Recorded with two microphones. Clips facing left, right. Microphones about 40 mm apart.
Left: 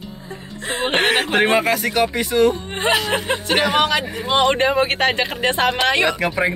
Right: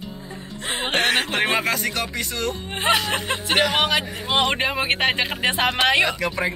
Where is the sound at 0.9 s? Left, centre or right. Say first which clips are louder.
Left 3 dB; left.